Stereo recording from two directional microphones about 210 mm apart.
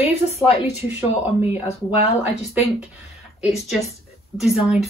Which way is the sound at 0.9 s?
10° right (ahead or behind).